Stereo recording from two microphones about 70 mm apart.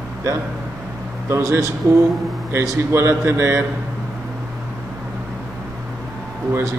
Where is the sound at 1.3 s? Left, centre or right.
Right.